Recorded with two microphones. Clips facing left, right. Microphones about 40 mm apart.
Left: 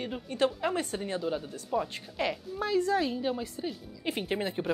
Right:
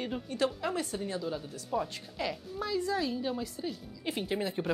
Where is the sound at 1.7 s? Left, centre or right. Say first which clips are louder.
Left 2 dB; centre.